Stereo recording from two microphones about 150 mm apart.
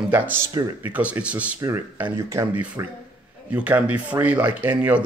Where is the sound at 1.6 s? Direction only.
20° right (ahead or behind).